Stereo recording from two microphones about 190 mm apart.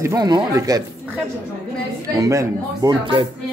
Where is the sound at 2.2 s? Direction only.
15° right (ahead or behind).